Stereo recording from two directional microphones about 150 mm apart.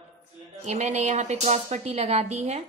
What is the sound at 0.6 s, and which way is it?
Speech, 50° right (ahead or behind).